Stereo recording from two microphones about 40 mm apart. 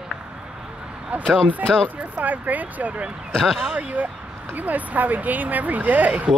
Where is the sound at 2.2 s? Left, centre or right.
Right.